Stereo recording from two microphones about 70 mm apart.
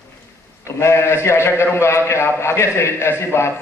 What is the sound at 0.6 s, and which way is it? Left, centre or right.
A man's voice, left.